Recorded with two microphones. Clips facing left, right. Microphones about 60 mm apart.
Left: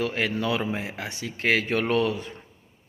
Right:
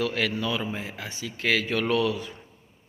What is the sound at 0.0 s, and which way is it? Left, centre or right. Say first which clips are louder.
Speech: even; left.